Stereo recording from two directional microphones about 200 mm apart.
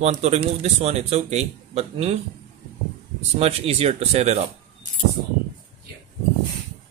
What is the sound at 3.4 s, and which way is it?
Speech, 30° right (ahead or behind).